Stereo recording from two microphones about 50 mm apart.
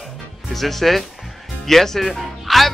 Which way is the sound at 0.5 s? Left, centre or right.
Centre.